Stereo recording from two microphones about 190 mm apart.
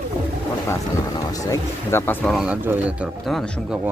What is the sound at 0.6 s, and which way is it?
Speech, 20° left (ahead or behind).